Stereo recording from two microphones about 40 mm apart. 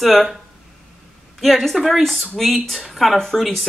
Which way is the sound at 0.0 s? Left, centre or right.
Centre.